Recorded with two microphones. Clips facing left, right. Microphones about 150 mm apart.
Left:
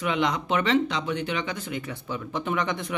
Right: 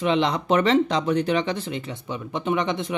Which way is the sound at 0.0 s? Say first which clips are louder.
Right 4 dB; 30° right (ahead or behind).